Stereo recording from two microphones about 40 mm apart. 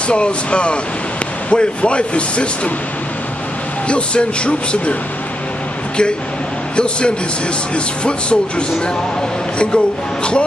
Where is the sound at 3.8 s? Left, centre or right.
Left.